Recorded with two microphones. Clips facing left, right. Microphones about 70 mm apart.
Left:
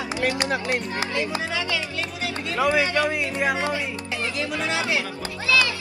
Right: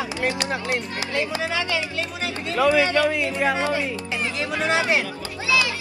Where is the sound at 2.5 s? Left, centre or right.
Left.